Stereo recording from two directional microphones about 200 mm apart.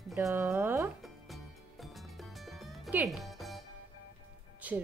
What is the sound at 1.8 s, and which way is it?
Music, centre (ahead or behind).